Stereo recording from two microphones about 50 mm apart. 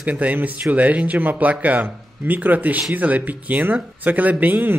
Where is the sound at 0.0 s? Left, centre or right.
Right.